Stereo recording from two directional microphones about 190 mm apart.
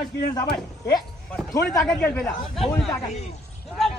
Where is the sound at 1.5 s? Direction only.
15° left (ahead or behind).